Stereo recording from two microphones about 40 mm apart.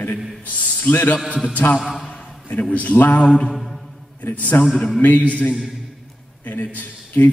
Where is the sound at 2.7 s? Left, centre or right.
Left.